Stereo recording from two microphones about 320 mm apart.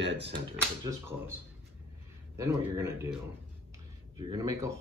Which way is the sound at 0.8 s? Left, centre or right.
Centre.